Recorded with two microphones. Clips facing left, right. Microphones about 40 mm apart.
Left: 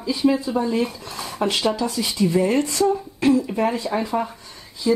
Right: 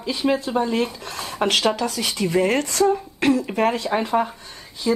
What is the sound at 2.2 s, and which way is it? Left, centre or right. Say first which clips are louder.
Speech: left 1 dB; right.